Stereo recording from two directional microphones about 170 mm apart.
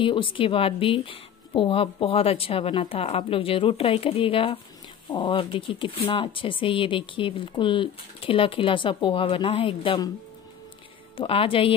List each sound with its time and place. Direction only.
0.0 s speech: 30° left (ahead or behind)
11.1 s speech: 35° left (ahead or behind)